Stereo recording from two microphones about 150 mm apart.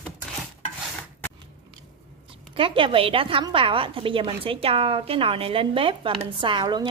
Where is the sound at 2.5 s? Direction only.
35° right (ahead or behind).